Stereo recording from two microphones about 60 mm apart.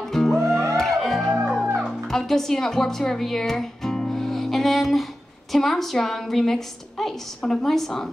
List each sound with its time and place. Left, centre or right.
0.1 s music: centre
0.4 s music: right
0.7 s music: centre
2.0 s a woman's voice: centre